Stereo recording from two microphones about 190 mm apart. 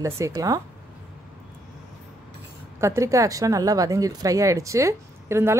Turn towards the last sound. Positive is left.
turn(degrees=-15)  # may be behind; listen again after turning